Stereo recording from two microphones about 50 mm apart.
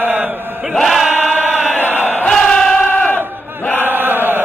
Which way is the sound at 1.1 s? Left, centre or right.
Right.